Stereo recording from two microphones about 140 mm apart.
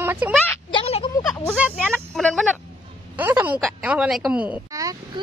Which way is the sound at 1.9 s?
Centre (ahead or behind).